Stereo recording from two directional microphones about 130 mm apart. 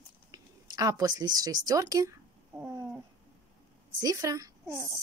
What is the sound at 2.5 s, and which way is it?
Cat, 5° right (ahead or behind).